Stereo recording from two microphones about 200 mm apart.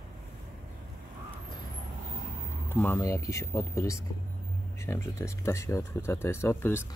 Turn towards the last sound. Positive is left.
turn(degrees=10)  # may be behind; listen again after turning